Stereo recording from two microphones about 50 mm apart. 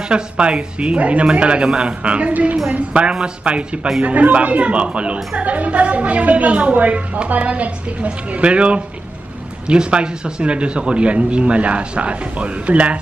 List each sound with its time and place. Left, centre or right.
0.1 s a woman's voice: centre